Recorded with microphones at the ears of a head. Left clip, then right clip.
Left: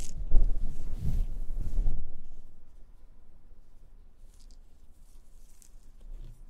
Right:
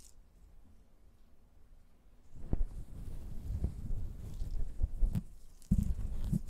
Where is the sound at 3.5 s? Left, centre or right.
Right.